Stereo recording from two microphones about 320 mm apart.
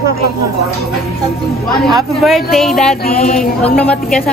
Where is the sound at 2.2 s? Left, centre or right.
Centre.